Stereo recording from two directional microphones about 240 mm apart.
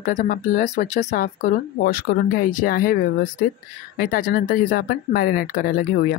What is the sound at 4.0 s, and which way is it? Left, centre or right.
Speech, left.